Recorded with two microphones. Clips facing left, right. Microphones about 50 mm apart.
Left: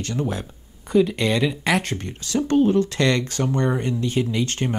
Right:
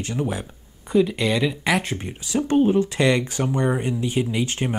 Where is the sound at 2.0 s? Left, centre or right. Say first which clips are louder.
Even; centre.